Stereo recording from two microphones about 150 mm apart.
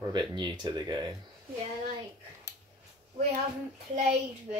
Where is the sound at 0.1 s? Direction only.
30° right (ahead or behind).